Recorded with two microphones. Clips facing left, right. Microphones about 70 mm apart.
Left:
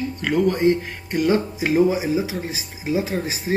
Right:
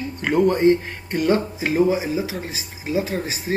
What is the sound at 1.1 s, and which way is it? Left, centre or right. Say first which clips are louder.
Music: even; centre.